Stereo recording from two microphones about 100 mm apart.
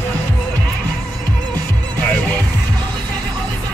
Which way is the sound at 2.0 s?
15° left (ahead or behind).